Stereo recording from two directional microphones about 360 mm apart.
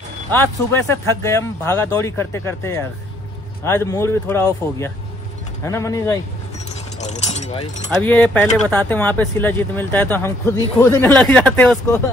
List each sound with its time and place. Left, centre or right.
0.3 s speech: centre
5.7 s speech: centre
7.0 s speech: centre
8.0 s speech: centre